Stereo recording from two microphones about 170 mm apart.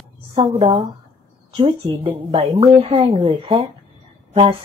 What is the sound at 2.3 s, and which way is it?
Speech, 35° right (ahead or behind).